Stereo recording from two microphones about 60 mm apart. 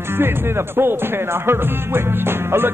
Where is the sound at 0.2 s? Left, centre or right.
Right.